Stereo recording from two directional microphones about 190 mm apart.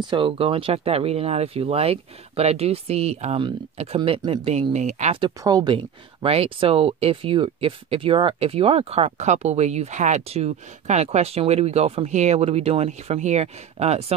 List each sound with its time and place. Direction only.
0.0 s speech: 25° right (ahead or behind)